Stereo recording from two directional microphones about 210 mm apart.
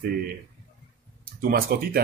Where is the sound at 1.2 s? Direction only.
45° right (ahead or behind).